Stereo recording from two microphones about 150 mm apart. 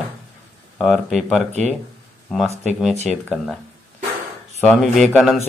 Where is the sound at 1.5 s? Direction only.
50° right (ahead or behind).